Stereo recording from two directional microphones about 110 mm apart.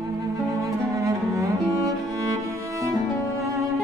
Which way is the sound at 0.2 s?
30° right (ahead or behind).